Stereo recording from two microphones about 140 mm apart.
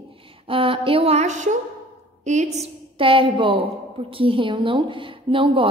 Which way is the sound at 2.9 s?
40° right (ahead or behind).